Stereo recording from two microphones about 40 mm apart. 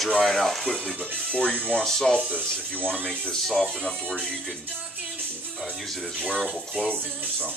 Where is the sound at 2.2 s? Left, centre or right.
Right.